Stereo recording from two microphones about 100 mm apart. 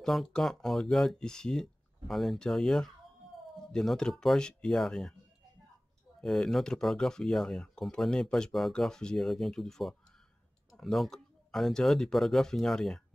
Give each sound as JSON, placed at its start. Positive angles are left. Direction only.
{"t": 0.0, "sound": "speech", "side_deg": 5}
{"t": 6.2, "sound": "speech", "side_deg": 0}